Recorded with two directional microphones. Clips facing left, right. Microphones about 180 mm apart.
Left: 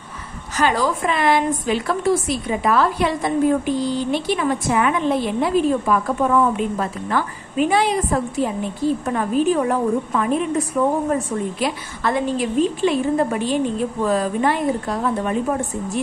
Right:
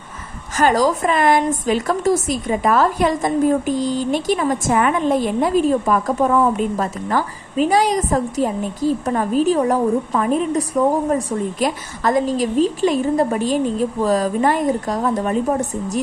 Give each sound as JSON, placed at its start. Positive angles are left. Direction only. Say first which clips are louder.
{"t": 0.6, "sound": "a woman's voice", "louder": "right 4 dB", "side_deg": -45}